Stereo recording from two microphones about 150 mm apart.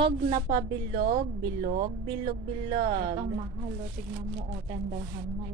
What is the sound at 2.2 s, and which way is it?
Speech, 70° right (ahead or behind).